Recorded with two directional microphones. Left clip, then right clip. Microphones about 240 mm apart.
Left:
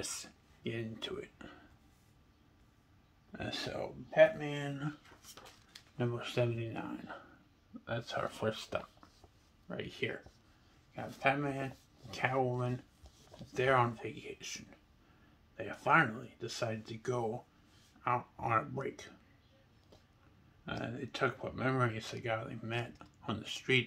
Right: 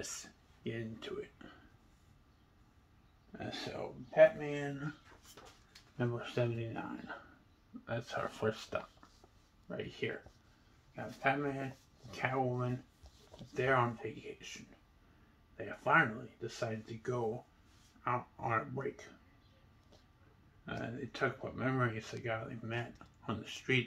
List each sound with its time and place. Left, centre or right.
0.0 s speech: centre
3.3 s speech: left
5.3 s dog: left
5.9 s speech: centre
7.9 s speech: centre
11.0 s speech: left
20.6 s speech: left